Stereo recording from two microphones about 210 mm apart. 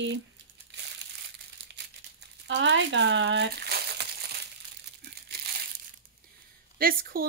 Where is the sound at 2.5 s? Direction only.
55° right (ahead or behind).